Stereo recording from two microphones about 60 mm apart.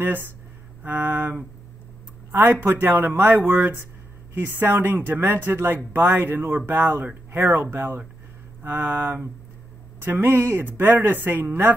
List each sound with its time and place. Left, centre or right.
0.0 s speech: right